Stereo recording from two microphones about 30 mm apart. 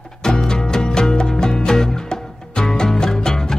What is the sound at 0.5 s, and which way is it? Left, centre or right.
Music, centre.